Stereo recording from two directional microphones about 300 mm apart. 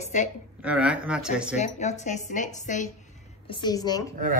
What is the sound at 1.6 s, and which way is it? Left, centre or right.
Speech, left.